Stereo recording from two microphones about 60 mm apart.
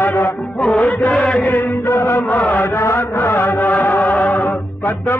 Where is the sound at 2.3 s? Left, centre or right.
Left.